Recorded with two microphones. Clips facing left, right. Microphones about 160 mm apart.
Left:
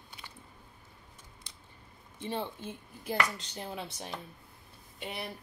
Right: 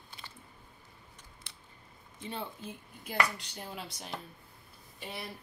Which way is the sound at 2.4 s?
30° left (ahead or behind).